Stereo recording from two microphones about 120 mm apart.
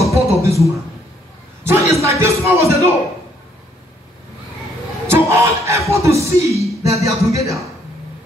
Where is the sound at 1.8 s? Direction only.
25° right (ahead or behind).